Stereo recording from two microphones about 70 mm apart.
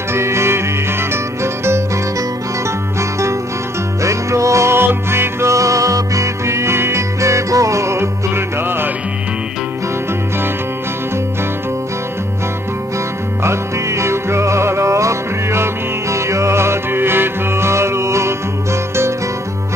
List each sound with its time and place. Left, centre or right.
0.1 s music: right
3.0 s music: right
13.4 s music: right